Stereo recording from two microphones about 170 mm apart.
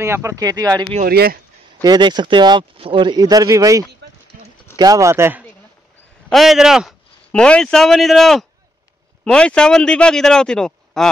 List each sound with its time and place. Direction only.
0.0 s speech: 15° right (ahead or behind)
1.0 s speech: 65° right (ahead or behind)
1.8 s speech: 25° right (ahead or behind)
6.3 s speech: centre (ahead or behind)